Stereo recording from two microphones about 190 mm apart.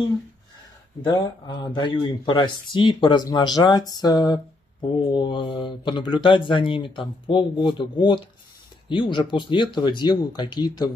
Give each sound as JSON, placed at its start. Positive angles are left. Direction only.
{"t": 1.0, "sound": "speech", "side_deg": 20}